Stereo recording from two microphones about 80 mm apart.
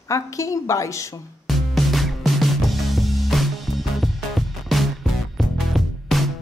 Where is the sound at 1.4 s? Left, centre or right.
Centre.